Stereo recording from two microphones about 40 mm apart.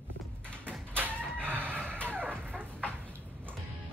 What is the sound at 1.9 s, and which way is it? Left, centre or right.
Dog, right.